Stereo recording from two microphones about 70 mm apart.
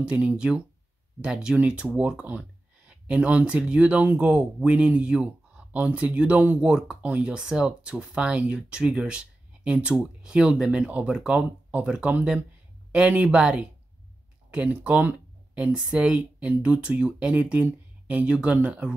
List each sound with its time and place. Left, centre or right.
0.0 s speech: centre